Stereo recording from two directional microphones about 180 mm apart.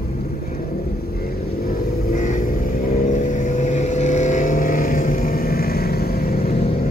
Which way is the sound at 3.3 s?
45° left (ahead or behind).